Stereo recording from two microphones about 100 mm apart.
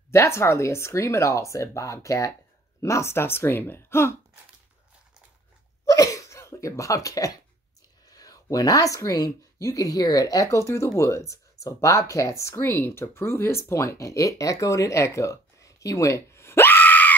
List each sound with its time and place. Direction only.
0.1 s speech: 30° left (ahead or behind)
5.9 s a sound: 35° left (ahead or behind)
8.1 s speech: 35° left (ahead or behind); by 17.1 s 20° left (ahead or behind)